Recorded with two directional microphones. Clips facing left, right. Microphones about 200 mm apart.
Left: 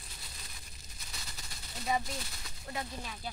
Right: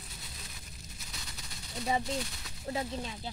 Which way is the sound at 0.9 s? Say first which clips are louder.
Even; centre (ahead or behind).